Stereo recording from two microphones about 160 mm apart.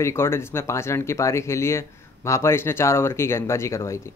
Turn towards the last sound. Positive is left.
turn(degrees=15)  # may be behind; listen again after turning